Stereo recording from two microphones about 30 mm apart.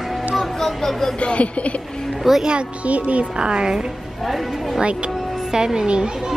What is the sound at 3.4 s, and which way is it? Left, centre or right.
Speech, right.